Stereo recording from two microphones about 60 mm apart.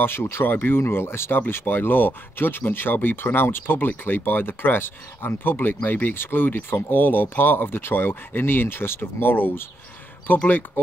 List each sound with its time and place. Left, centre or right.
0.0 s speech: left